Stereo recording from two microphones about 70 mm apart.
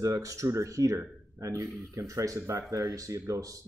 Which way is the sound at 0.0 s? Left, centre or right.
Right.